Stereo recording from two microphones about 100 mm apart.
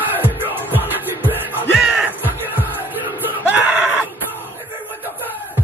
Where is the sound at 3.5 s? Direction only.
15° right (ahead or behind).